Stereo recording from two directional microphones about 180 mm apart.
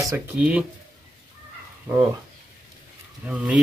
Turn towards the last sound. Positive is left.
turn(degrees=-5)  # may be behind; listen again after turning